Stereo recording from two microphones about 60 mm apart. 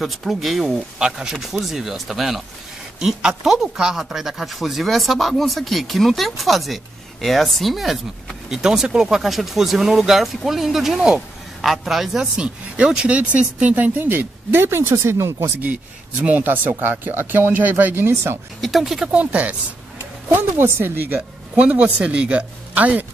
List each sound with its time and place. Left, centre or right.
0.0 s speech: centre
12.4 s speech: centre; by 15.3 s right
15.6 s speech: right
18.6 s speech: centre
19.0 s speech: right
20.3 s speech: right
21.5 s speech: right